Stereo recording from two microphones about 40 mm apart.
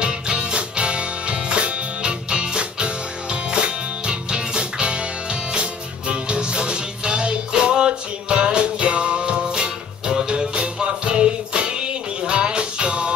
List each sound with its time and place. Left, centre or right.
0.0 s music: right